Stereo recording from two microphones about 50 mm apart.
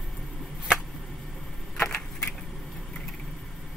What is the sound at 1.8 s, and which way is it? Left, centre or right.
Keys jangling, left.